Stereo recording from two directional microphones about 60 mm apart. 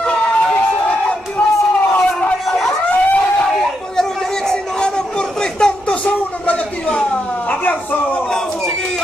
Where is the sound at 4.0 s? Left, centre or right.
Centre.